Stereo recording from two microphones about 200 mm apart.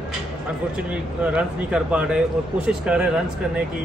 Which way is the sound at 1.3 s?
5° right (ahead or behind).